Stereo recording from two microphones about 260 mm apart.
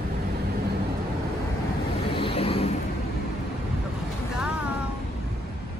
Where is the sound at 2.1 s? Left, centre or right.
Left.